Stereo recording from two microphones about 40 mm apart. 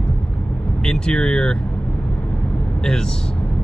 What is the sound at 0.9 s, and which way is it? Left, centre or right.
Speech, centre.